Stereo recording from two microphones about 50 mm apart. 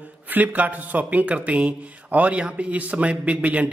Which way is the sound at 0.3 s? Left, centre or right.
Right.